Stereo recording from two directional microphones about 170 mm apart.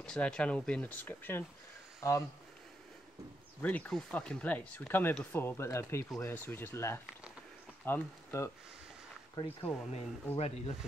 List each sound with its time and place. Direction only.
0.0 s speech: 5° left (ahead or behind)
3.6 s speech: 10° left (ahead or behind)
9.3 s speech: 25° left (ahead or behind)
10.3 s speech: 40° left (ahead or behind)